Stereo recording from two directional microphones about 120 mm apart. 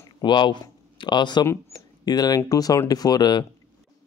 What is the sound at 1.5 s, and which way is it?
Speech, 25° left (ahead or behind).